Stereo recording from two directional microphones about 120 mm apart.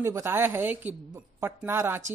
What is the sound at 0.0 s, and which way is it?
Speech, 20° right (ahead or behind).